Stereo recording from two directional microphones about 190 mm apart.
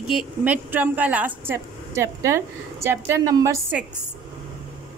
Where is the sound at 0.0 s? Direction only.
Centre (ahead or behind).